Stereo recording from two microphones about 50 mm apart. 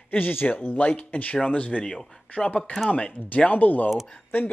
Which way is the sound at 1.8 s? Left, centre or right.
Centre.